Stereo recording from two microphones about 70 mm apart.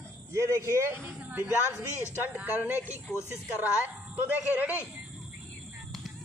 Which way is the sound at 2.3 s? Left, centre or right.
Right.